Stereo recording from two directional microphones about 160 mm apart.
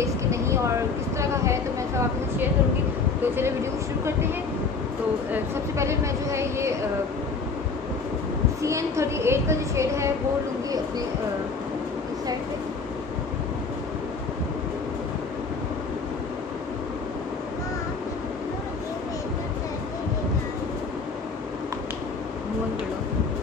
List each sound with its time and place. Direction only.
0.0 s vehicle: 20° right (ahead or behind)
1.1 s a sound: 20° right (ahead or behind)
5.3 s a woman's voice: 15° right (ahead or behind)
8.6 s a woman's voice: 20° right (ahead or behind)